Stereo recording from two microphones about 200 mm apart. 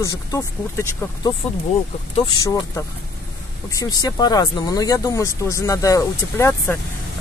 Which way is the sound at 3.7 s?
15° left (ahead or behind).